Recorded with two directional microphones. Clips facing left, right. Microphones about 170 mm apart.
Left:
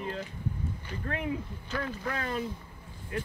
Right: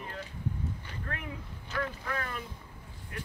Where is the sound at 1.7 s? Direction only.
30° left (ahead or behind).